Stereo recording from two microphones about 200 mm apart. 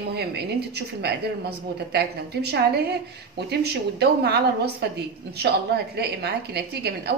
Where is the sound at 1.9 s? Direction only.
55° right (ahead or behind).